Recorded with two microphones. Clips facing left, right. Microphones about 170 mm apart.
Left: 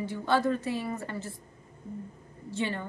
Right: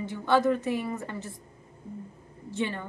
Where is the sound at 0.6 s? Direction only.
20° right (ahead or behind).